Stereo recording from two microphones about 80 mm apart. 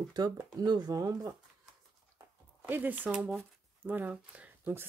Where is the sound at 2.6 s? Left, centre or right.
Right.